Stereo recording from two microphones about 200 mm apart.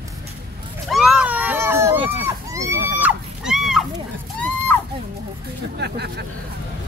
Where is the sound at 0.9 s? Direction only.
5° right (ahead or behind).